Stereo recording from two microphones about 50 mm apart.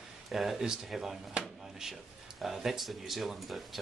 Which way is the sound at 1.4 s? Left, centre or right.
Centre.